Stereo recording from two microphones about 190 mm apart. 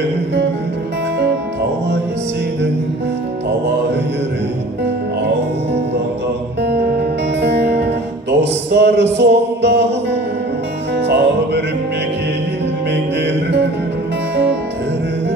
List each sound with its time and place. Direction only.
6.6 s music: 60° right (ahead or behind)
11.1 s music: 60° right (ahead or behind)
14.3 s music: 65° right (ahead or behind)